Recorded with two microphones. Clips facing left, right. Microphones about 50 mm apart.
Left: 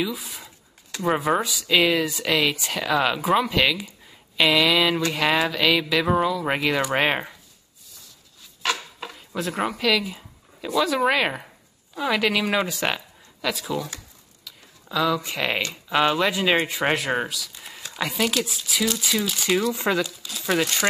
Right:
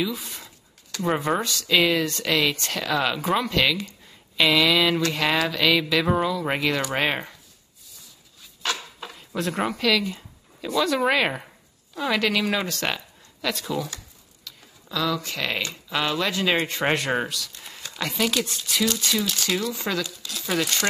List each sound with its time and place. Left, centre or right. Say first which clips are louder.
0.0 s speech: even; centre
9.1 s speech: right 1 dB; centre
14.4 s a sound: even; centre
15.7 s speech: left 5 dB; left
20.1 s speech: left 3 dB; centre